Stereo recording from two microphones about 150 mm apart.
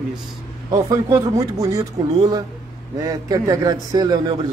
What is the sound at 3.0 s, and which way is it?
A man's voice, 25° right (ahead or behind).